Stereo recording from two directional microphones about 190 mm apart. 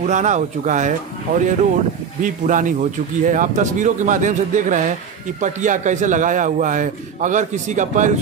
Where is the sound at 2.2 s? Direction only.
45° right (ahead or behind).